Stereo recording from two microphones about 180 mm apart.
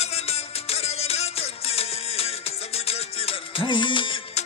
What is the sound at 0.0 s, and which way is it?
Music, 35° left (ahead or behind).